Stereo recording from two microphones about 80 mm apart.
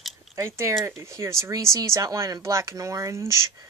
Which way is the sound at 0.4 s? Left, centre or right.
Right.